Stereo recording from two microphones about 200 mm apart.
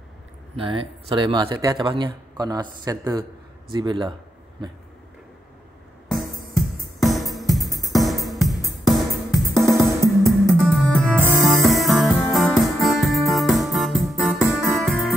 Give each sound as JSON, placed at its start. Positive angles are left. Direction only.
{"t": 0.6, "sound": "speech", "side_deg": -25}
{"t": 6.0, "sound": "music", "side_deg": 0}